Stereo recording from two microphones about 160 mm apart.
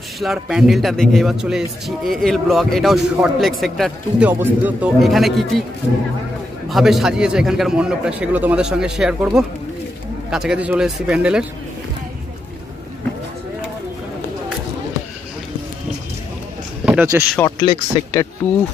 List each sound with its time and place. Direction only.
0.2 s a man's voice: centre (ahead or behind)
4.3 s speech: 10° right (ahead or behind)
6.7 s a man's voice: centre (ahead or behind)
16.8 s a sound: 5° right (ahead or behind)
17.5 s speech: 25° left (ahead or behind)